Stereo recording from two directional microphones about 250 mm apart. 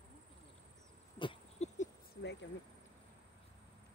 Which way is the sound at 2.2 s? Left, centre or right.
Left.